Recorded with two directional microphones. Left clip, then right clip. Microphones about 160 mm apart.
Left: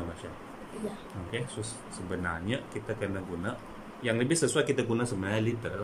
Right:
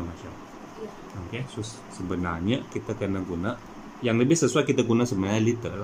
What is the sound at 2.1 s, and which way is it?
Speech, 15° right (ahead or behind).